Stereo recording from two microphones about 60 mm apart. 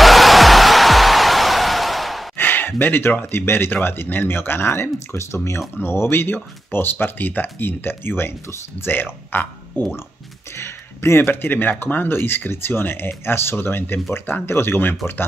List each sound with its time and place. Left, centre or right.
0.0 s music: centre
2.3 s speech: left
10.6 s speech: left